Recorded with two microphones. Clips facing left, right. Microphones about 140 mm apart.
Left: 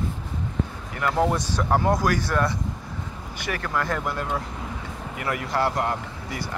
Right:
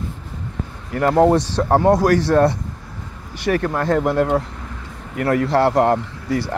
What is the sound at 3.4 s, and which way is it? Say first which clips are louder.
Speech: right 8 dB; 40° right (ahead or behind).